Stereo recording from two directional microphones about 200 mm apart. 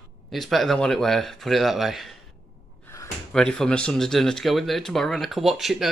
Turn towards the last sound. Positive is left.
turn(degrees=0)  # may be behind; listen again after turning